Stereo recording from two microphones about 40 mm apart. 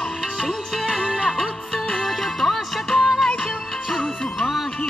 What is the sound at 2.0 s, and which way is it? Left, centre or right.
Music, centre.